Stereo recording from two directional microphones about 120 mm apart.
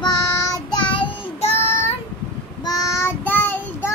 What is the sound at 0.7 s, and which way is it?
Child singing, 40° left (ahead or behind).